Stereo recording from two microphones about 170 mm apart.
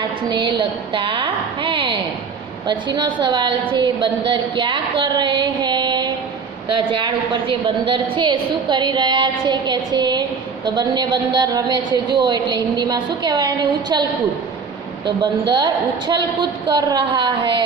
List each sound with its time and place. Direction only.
0.3 s a woman's voice: 30° right (ahead or behind)
15.0 s a woman's voice: 25° right (ahead or behind)